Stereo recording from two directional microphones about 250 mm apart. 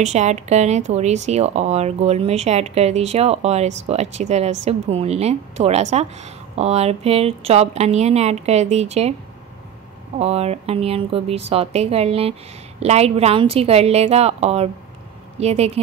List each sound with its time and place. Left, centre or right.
0.0 s a woman's voice: right
10.1 s a woman's voice: right